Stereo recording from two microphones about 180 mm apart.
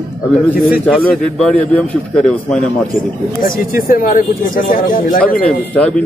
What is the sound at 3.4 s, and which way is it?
Speech, 50° left (ahead or behind).